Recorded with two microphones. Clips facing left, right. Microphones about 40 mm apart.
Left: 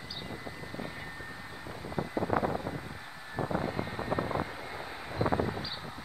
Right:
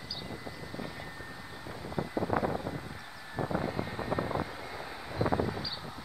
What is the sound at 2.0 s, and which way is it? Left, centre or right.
Vehicle, centre.